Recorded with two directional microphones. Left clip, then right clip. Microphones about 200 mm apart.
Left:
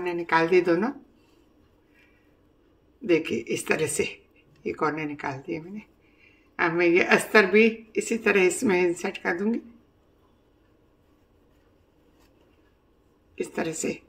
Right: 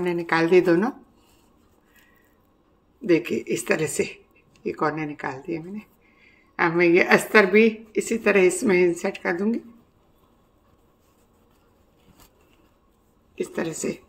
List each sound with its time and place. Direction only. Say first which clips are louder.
0.0 s a woman's voice: right 1 dB; 15° right (ahead or behind)
3.1 s a woman's voice: right 2 dB; 10° right (ahead or behind)
13.3 s speech: right 1 dB; 5° right (ahead or behind)